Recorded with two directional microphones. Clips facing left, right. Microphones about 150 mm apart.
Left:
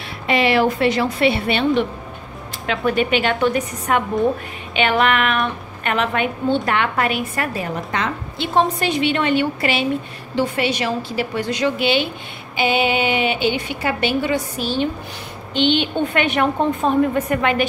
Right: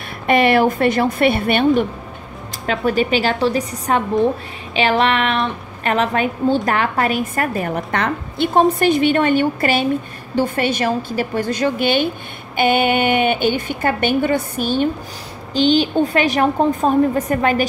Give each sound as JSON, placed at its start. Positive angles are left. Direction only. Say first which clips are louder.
{"t": 0.3, "sound": "a woman's voice", "louder": "right 3 dB", "side_deg": -50}
{"t": 15.5, "sound": "a woman's voice", "louder": "right 4 dB", "side_deg": -40}